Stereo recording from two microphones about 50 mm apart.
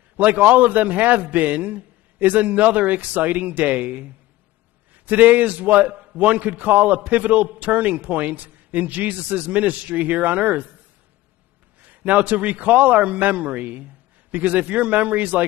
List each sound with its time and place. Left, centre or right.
0.2 s a man's voice: right
11.8 s a man's voice: right